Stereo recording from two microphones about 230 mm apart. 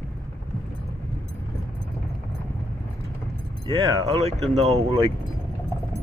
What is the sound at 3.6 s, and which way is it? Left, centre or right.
Speech, right.